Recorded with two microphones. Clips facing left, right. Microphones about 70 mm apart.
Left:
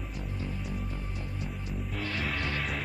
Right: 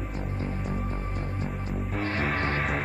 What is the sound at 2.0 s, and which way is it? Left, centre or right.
Music, right.